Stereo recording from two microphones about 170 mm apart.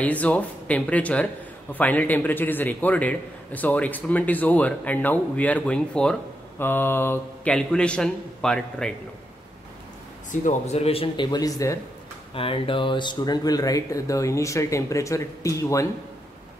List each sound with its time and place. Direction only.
0.0 s a man's voice: 10° left (ahead or behind)
10.3 s a man's voice: 45° left (ahead or behind)
11.2 s speech: 20° left (ahead or behind)
12.4 s speech: 35° left (ahead or behind)